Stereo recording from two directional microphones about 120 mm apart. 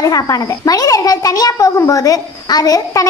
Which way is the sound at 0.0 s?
30° left (ahead or behind).